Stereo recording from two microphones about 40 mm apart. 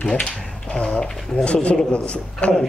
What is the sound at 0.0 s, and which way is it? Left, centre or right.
Speech, left.